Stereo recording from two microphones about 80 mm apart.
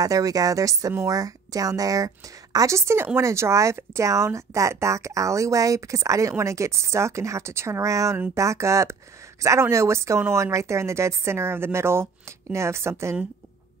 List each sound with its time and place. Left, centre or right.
0.0 s speech: right